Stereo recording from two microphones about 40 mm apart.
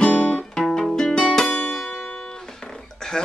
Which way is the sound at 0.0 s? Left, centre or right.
Left.